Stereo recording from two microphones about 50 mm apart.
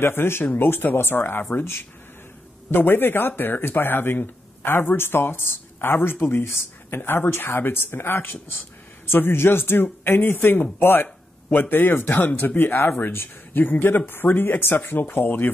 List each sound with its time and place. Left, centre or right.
0.0 s speech: left